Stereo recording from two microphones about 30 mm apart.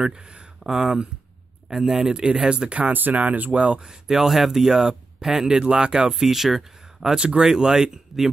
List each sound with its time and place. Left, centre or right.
0.1 s speech: right
2.1 s speech: right
2.9 s speech: right
3.2 s speech: right
3.5 s speech: right
3.9 s speech: centre
5.5 s speech: right
6.1 s speech: centre
7.2 s speech: right
7.4 s speech: right